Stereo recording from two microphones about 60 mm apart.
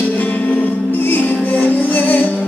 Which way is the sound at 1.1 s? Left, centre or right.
Left.